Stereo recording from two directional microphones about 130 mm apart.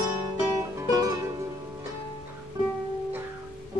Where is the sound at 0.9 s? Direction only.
30° right (ahead or behind).